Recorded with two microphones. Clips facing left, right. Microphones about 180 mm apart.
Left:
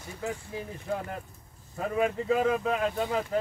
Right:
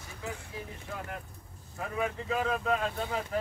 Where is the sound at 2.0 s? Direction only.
20° left (ahead or behind).